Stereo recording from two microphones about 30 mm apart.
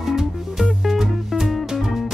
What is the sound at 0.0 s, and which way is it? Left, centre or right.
Music, centre.